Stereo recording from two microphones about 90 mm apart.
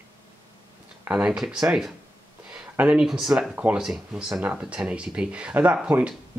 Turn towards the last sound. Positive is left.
turn(degrees=-20)  # may be behind; listen again after turning